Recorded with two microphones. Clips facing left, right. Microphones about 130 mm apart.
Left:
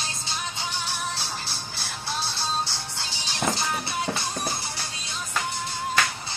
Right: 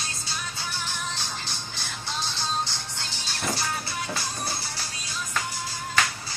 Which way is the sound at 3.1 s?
15° left (ahead or behind).